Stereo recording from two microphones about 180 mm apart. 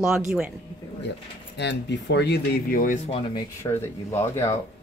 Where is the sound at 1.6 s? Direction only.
75° left (ahead or behind); by 3.0 s 50° left (ahead or behind).